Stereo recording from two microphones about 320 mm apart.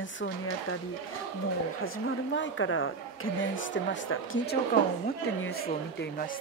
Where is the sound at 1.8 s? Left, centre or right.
Left.